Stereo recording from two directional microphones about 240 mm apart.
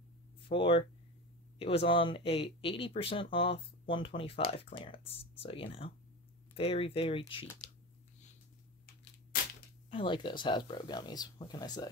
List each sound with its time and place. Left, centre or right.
0.5 s speech: left
9.8 s speech: left